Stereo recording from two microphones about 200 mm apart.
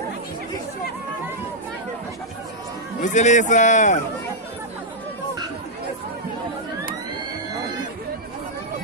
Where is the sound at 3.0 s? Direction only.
35° left (ahead or behind).